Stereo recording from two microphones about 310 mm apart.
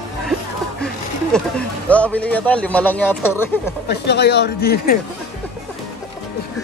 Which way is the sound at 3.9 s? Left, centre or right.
Left.